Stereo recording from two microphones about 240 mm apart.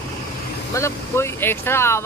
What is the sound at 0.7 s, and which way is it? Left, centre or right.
Speech, centre.